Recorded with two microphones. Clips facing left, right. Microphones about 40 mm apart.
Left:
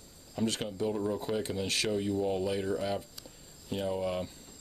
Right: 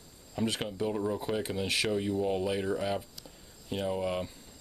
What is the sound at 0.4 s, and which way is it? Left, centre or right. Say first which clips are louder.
Speech: even; centre.